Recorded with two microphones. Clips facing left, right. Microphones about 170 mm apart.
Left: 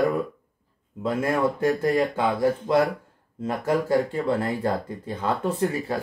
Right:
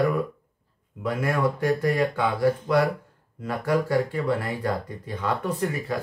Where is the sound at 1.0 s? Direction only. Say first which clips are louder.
Left 2 dB; 25° left (ahead or behind).